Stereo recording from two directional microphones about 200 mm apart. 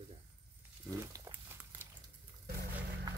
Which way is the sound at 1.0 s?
15° right (ahead or behind).